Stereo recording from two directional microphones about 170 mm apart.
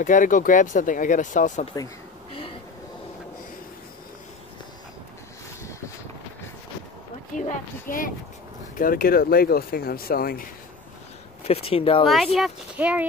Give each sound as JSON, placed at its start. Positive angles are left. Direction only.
{"t": 0.0, "sound": "speech", "side_deg": 50}
{"t": 7.3, "sound": "speech", "side_deg": 50}
{"t": 11.4, "sound": "speech", "side_deg": 35}
{"t": 12.4, "sound": "speech", "side_deg": -5}